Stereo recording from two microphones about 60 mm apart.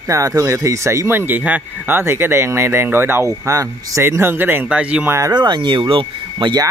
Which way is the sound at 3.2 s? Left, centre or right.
Right.